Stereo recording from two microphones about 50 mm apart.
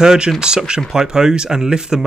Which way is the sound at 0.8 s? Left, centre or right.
Centre.